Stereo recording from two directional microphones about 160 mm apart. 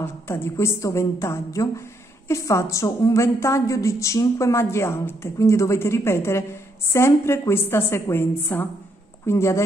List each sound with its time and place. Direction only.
0.0 s a woman's voice: 15° left (ahead or behind)